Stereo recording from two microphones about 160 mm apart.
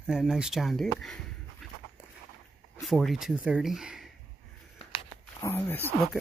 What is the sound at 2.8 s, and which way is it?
Speech, centre (ahead or behind).